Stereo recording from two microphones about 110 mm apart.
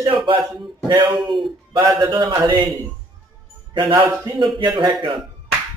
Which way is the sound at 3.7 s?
45° right (ahead or behind).